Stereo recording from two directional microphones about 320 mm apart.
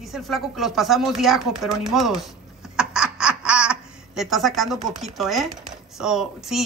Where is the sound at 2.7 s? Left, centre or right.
Centre.